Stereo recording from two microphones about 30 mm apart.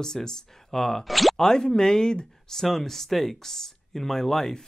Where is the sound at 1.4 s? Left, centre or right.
Left.